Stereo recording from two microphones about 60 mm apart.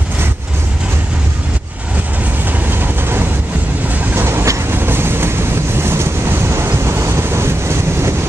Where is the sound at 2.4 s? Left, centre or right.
Right.